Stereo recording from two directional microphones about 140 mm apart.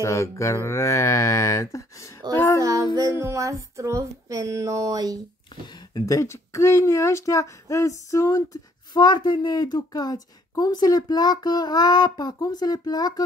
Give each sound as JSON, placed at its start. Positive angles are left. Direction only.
{"t": 0.0, "sound": "speech", "side_deg": 20}
{"t": 2.3, "sound": "child singing", "side_deg": 20}
{"t": 2.6, "sound": "child singing", "side_deg": -25}
{"t": 3.2, "sound": "a sound", "side_deg": -20}
{"t": 5.7, "sound": "speech", "side_deg": 30}